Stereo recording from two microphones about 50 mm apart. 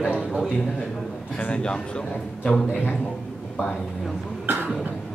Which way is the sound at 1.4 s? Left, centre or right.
Left.